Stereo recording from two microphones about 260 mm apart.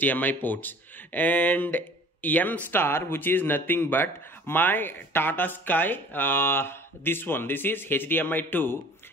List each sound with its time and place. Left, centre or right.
0.0 s speech: centre